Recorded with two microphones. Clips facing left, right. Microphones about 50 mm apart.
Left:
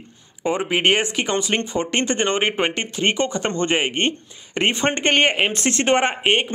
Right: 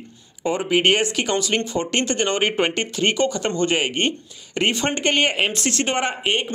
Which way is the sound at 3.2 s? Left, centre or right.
Left.